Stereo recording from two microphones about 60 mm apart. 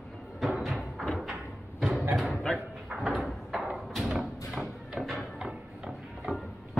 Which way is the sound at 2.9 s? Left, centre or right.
Centre.